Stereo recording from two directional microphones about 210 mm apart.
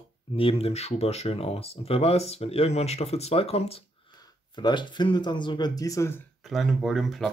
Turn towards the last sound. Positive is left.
turn(degrees=0)  # may be behind; listen again after turning